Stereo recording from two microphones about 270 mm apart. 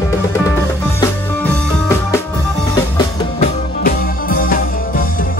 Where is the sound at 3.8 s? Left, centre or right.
Left.